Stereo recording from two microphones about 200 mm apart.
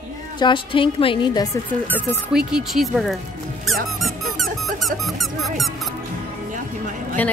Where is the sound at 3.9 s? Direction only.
Centre (ahead or behind).